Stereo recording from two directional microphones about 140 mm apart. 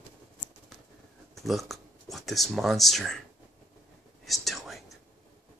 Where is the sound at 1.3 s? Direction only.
Centre (ahead or behind).